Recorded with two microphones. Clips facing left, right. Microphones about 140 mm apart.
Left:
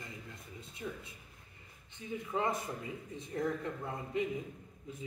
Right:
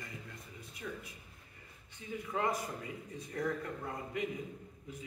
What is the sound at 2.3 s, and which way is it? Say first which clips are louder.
Speech: even; 25° left (ahead or behind).